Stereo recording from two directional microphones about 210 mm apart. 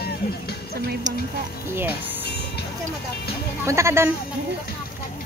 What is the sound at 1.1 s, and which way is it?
Speech, 35° right (ahead or behind).